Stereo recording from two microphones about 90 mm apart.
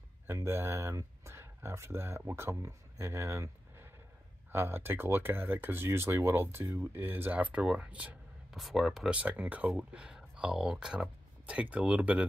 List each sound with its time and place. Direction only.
0.3 s speech: 25° right (ahead or behind)
8.5 s speech: centre (ahead or behind)
9.1 s speech: 15° right (ahead or behind)